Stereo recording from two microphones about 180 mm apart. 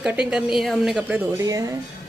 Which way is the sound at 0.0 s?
5° right (ahead or behind).